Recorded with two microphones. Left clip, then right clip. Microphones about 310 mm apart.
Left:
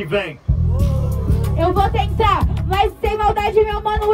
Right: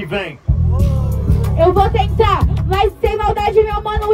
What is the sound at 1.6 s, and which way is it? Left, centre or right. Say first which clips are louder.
Speech: right 5 dB; centre.